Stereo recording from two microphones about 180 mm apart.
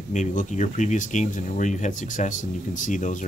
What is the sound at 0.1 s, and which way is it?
Speech, 45° left (ahead or behind).